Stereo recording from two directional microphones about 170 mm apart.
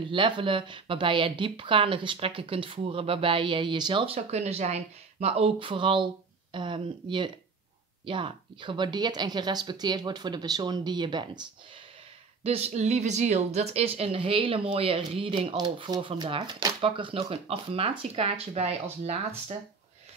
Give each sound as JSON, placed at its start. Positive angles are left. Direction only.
{"t": 0.1, "sound": "a woman's voice", "side_deg": -30}
{"t": 12.4, "sound": "a woman's voice", "side_deg": -40}